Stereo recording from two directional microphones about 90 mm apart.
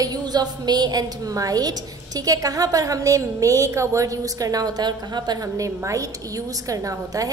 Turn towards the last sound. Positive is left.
turn(degrees=-40)  # may be behind; listen again after turning